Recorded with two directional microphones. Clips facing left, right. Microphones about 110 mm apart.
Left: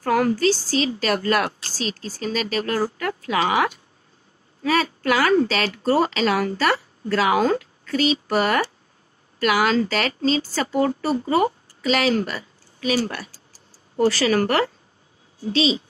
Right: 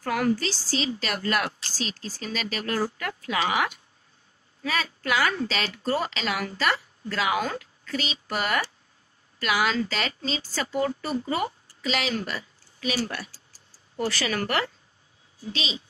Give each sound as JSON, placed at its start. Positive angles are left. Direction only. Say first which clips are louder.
{"t": 0.0, "sound": "a woman's voice", "louder": "left 6 dB", "side_deg": 40}
{"t": 5.0, "sound": "a woman's voice", "louder": "left 7 dB", "side_deg": 40}